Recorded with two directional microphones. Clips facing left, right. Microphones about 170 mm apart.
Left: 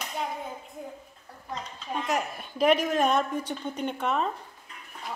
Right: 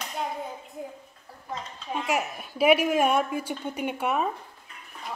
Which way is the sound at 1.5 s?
5° right (ahead or behind).